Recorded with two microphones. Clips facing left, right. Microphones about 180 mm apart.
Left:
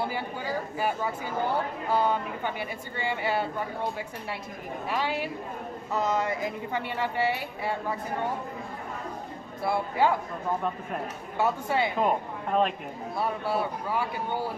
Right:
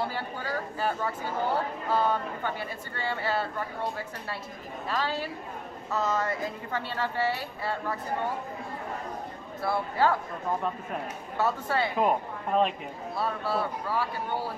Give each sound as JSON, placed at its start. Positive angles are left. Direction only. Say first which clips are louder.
{"t": 0.0, "sound": "a woman's voice", "louder": "left 1 dB", "side_deg": 15}
{"t": 4.8, "sound": "a woman's voice", "louder": "left 1 dB", "side_deg": 15}
{"t": 9.7, "sound": "a woman's voice", "louder": "left 1 dB", "side_deg": 15}
{"t": 11.3, "sound": "a woman's voice", "louder": "left 1 dB", "side_deg": 15}
{"t": 12.0, "sound": "speech", "louder": "even", "side_deg": 0}
{"t": 13.2, "sound": "a woman's voice", "louder": "left 1 dB", "side_deg": 15}